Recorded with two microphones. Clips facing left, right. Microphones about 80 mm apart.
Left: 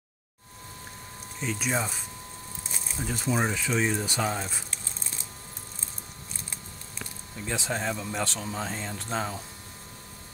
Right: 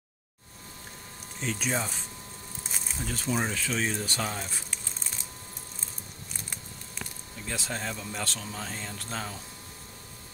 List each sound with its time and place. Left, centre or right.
1.4 s speech: centre
3.0 s speech: centre
7.4 s speech: centre